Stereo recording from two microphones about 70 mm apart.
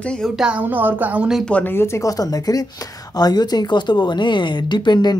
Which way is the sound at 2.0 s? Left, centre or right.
Left.